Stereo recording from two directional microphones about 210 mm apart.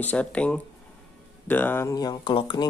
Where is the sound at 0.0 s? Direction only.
5° left (ahead or behind).